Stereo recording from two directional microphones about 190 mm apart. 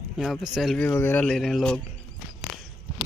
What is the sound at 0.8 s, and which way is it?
Speech, 10° left (ahead or behind).